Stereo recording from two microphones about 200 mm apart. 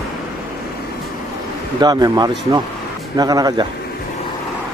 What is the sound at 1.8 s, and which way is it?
Speech, 20° right (ahead or behind).